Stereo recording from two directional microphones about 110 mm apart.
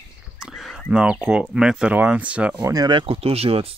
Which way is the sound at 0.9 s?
10° right (ahead or behind).